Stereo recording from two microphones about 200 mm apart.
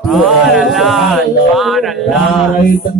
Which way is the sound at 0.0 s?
Centre (ahead or behind).